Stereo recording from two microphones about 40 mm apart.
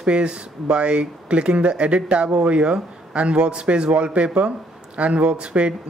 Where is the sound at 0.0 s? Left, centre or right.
Right.